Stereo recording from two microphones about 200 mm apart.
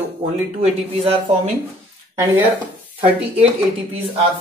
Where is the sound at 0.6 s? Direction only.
30° right (ahead or behind).